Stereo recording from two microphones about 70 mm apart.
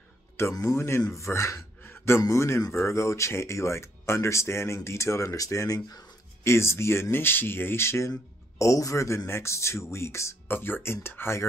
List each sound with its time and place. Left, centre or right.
0.4 s speech: left
1.8 s a sound: left
2.2 s speech: left
6.4 s speech: left
8.5 s speech: left
10.5 s speech: left